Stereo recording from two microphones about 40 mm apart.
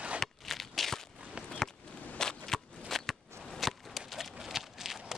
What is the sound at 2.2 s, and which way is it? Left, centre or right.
Shuffling cards, centre.